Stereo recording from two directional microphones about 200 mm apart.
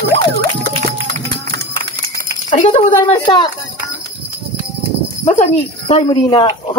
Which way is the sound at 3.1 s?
20° left (ahead or behind).